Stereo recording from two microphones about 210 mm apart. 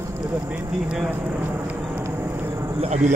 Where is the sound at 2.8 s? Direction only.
30° right (ahead or behind).